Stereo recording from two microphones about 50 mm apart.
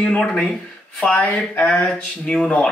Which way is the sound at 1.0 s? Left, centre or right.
Left.